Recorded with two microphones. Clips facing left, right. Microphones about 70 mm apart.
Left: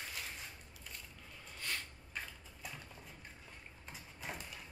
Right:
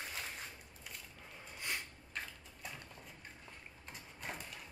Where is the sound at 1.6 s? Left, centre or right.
Centre.